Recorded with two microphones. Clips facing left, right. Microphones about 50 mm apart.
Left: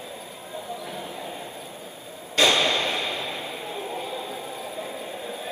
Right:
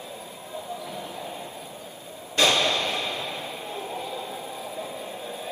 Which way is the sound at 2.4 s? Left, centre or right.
Left.